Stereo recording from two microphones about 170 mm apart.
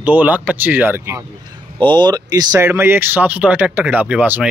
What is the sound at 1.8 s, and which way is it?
Speech, 25° right (ahead or behind).